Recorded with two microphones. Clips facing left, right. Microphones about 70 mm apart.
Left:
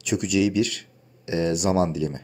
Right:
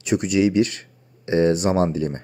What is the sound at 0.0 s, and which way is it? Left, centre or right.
Speech, right.